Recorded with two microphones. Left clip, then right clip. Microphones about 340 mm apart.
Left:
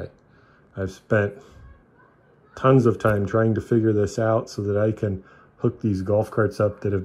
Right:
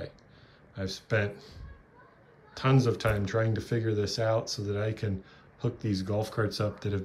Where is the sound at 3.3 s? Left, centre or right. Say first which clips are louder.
Left 8 dB; left.